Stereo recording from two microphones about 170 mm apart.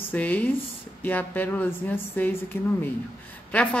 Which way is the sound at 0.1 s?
10° left (ahead or behind).